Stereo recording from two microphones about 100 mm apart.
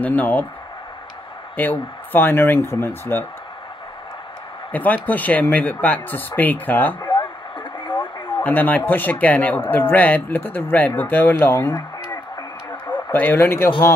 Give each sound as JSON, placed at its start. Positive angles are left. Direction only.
{"t": 0.0, "sound": "speech", "side_deg": 15}
{"t": 1.6, "sound": "speech", "side_deg": 20}
{"t": 4.7, "sound": "speech", "side_deg": 15}
{"t": 7.0, "sound": "a sound", "side_deg": 50}
{"t": 7.8, "sound": "radio", "side_deg": 55}
{"t": 8.4, "sound": "speech", "side_deg": 15}
{"t": 13.1, "sound": "speech", "side_deg": 20}